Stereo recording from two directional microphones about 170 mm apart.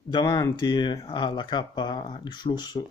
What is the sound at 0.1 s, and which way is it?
Speech, 25° left (ahead or behind).